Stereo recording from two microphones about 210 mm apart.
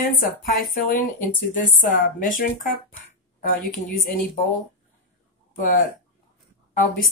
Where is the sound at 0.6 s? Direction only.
45° left (ahead or behind).